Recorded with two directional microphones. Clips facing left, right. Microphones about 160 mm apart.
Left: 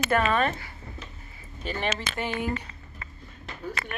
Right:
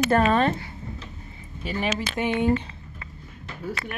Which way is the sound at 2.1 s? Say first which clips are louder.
Right 7 dB; 20° right (ahead or behind).